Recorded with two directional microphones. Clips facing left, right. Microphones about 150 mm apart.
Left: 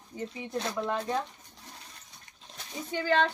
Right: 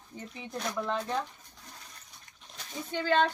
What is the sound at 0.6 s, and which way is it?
Speech, 25° left (ahead or behind).